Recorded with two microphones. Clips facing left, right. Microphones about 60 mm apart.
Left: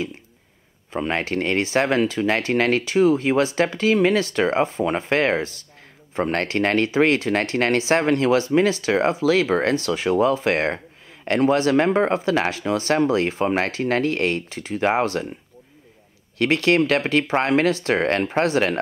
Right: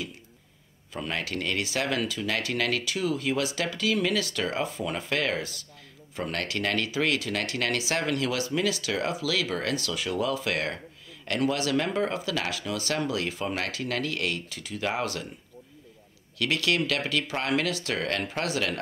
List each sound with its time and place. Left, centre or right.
0.9 s speech: left
16.3 s speech: left